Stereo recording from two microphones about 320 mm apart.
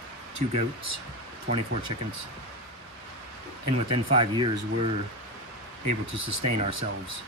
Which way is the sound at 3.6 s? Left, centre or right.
Right.